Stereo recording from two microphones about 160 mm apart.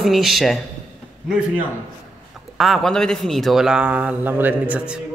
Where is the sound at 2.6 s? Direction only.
Centre (ahead or behind).